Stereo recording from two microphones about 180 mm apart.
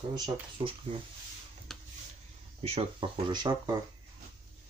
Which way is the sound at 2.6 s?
35° right (ahead or behind).